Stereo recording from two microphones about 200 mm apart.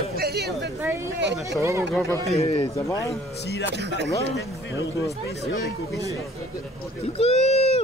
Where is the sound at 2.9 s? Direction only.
15° left (ahead or behind).